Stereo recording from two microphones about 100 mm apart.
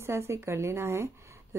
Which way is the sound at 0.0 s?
25° right (ahead or behind).